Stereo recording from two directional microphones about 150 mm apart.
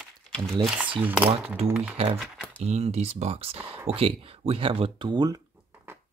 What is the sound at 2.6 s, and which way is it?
Speech, 45° right (ahead or behind).